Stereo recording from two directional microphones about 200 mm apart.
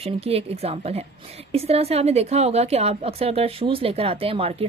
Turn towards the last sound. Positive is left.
turn(degrees=-30)  # may be behind; listen again after turning